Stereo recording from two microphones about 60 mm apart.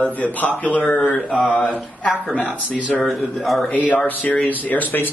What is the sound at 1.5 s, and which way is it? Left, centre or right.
Speech, centre.